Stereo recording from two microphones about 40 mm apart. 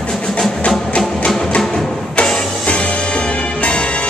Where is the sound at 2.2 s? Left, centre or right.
Centre.